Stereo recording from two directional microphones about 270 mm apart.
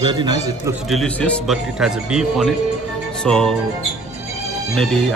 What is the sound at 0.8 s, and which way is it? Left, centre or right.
Speech, centre.